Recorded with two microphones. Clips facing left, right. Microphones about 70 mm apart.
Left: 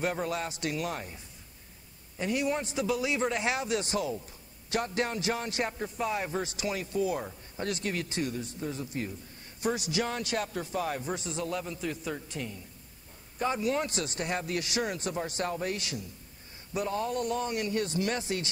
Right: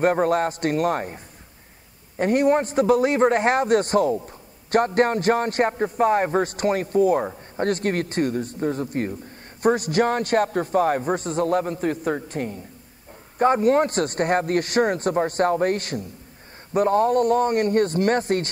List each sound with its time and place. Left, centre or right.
0.0 s a man's voice: right